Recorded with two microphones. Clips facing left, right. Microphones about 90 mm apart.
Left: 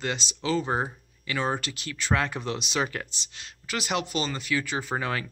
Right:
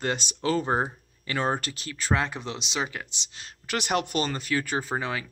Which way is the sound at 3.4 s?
35° right (ahead or behind).